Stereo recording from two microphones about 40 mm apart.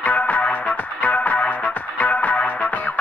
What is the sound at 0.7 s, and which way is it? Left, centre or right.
Music, left.